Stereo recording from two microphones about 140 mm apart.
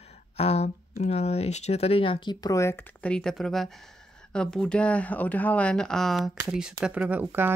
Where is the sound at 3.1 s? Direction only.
5° left (ahead or behind); by 7.5 s 15° right (ahead or behind).